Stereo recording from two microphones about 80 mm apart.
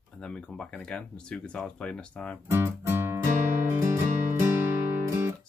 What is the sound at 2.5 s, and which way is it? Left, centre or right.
Music, right.